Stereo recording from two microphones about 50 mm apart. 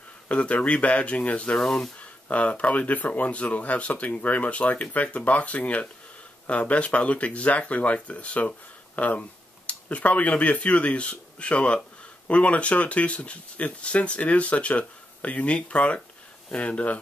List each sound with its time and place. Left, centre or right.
0.3 s speech: left
1.6 s speech: centre
2.0 s speech: left